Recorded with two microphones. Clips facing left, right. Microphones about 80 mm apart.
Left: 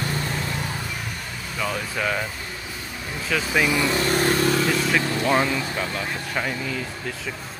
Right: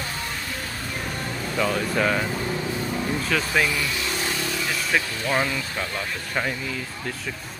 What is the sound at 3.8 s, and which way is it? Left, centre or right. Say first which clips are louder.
Vehicle: left 7 dB; left.